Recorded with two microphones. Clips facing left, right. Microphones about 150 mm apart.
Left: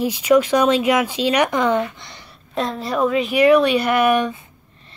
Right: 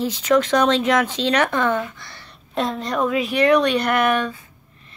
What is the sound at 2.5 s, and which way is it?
Speech, centre (ahead or behind).